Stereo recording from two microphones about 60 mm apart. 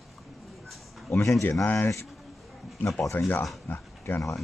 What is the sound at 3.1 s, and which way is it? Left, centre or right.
Speech, left.